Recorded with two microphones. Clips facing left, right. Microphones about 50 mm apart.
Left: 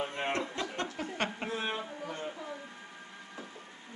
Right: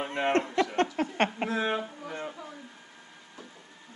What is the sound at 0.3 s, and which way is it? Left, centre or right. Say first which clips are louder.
Speech: right 8 dB; right.